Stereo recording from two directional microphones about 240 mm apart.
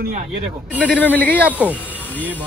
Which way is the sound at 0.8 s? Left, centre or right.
Centre.